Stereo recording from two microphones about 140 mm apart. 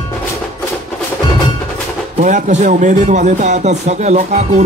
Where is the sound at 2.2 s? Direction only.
60° right (ahead or behind).